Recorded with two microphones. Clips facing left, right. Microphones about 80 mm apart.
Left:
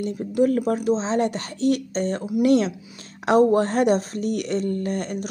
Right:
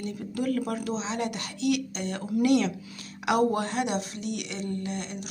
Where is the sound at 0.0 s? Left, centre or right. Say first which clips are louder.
Left 10 dB; left.